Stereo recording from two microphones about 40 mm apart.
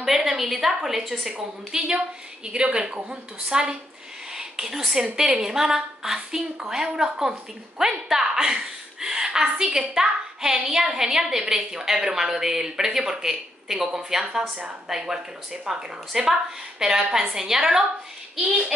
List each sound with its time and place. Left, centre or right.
0.0 s a woman's voice: centre
4.3 s a sound: centre
5.1 s a woman's voice: centre